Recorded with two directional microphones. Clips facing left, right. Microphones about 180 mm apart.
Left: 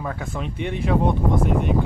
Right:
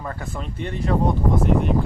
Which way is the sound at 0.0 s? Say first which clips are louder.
Left 2 dB; centre (ahead or behind).